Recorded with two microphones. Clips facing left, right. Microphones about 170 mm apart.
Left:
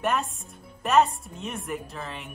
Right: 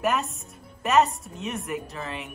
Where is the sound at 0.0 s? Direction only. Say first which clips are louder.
Right 1 dB; centre (ahead or behind).